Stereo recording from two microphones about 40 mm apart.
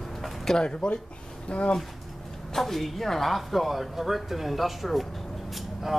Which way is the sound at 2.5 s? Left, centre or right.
Centre.